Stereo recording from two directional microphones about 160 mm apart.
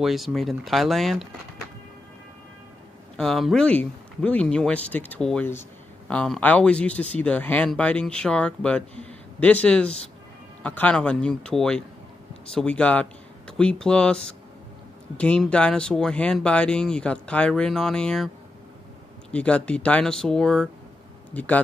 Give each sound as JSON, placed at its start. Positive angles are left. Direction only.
{"t": 0.0, "sound": "speech", "side_deg": 0}
{"t": 3.2, "sound": "speech", "side_deg": 0}
{"t": 19.3, "sound": "speech", "side_deg": 10}